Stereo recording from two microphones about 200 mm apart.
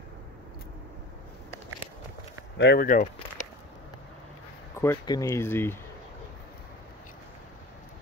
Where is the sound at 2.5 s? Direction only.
55° left (ahead or behind).